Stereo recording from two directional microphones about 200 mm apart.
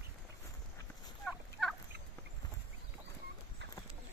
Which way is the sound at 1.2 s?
Centre (ahead or behind).